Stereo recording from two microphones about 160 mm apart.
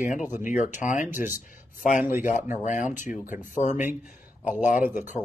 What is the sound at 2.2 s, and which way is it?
Speech, 55° left (ahead or behind).